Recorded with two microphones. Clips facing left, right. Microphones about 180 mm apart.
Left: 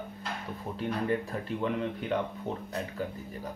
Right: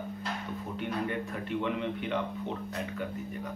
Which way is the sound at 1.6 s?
40° left (ahead or behind).